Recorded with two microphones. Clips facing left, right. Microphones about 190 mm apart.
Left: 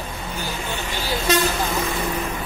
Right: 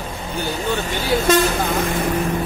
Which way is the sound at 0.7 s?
50° right (ahead or behind).